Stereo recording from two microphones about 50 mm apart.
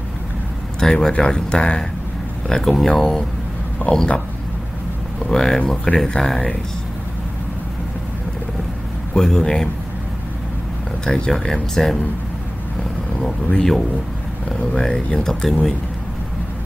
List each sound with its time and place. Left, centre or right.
0.7 s speech: centre
3.9 s speech: left
5.2 s speech: centre
9.1 s speech: centre
11.1 s speech: centre
13.2 s speech: centre
15.1 s speech: centre